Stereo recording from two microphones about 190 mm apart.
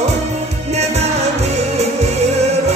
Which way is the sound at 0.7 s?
35° right (ahead or behind).